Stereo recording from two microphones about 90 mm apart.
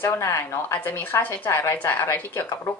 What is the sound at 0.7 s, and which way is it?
A woman's voice, 20° left (ahead or behind).